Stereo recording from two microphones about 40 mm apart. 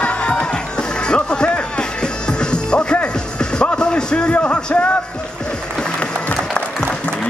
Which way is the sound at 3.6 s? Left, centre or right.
Left.